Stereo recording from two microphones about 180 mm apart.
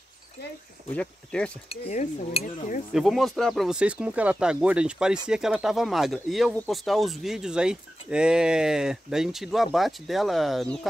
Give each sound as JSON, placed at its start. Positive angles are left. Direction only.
{"t": 0.9, "sound": "speech", "side_deg": 5}
{"t": 1.7, "sound": "dishes", "side_deg": 40}
{"t": 2.9, "sound": "speech", "side_deg": 0}